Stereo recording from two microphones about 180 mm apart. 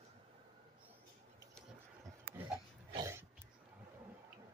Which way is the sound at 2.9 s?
15° right (ahead or behind).